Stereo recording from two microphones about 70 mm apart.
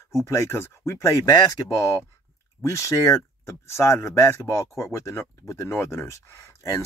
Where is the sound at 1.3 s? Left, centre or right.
Left.